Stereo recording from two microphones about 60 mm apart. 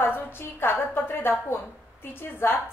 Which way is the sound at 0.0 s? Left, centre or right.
Left.